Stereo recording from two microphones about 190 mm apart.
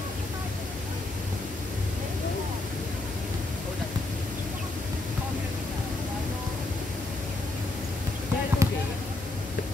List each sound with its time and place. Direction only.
8.6 s basketball bounce: 15° right (ahead or behind)